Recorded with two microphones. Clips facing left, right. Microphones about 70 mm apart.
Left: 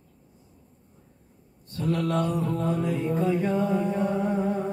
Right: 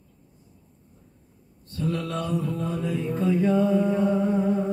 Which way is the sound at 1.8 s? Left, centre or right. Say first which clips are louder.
Left 3 dB; left.